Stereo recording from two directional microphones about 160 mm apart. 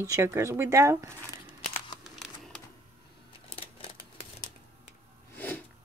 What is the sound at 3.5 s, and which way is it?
Typewriter, 35° left (ahead or behind).